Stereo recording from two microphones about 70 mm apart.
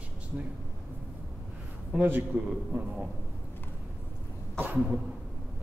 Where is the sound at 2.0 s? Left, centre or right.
Right.